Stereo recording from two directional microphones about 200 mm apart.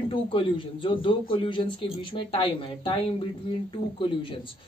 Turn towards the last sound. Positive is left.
turn(degrees=25)  # may be behind; listen again after turning